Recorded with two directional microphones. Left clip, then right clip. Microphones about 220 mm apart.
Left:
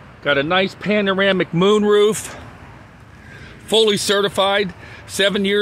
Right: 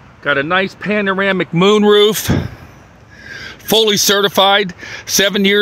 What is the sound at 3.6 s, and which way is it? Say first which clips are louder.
Speech: right 4 dB; 55° right (ahead or behind).